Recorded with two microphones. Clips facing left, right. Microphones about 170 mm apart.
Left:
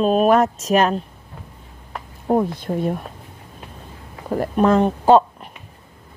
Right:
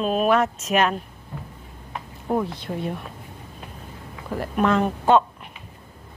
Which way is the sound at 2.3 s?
40° left (ahead or behind).